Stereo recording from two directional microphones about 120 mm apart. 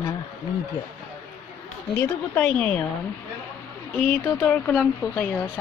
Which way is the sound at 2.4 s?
10° left (ahead or behind).